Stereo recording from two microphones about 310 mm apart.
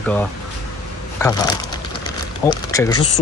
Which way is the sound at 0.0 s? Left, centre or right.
Centre.